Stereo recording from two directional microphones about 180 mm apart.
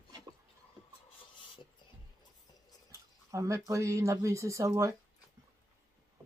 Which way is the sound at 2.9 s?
15° right (ahead or behind).